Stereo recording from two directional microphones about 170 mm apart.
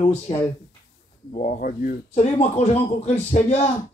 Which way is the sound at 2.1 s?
40° left (ahead or behind).